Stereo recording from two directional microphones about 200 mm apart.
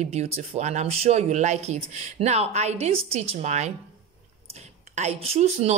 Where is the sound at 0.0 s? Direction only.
35° right (ahead or behind).